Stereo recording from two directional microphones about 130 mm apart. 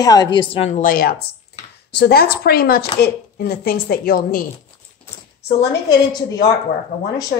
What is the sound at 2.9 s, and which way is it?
Speech, 35° left (ahead or behind).